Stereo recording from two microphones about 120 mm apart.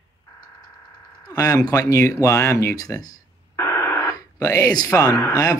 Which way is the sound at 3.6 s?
20° left (ahead or behind).